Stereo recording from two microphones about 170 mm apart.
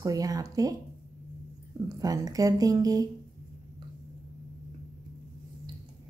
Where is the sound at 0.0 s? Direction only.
20° right (ahead or behind).